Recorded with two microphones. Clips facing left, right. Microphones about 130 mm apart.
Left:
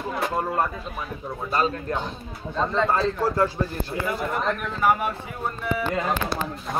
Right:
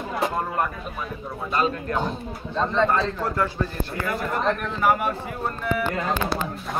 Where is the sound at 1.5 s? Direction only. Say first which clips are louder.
Even; 35° left (ahead or behind).